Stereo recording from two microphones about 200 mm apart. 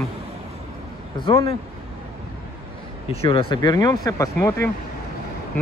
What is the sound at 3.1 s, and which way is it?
Speech, 30° left (ahead or behind).